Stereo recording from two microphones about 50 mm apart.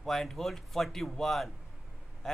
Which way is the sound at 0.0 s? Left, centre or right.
Centre.